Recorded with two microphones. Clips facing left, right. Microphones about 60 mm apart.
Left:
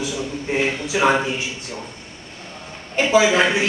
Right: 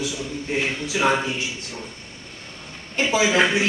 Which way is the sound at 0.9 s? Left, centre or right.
Left.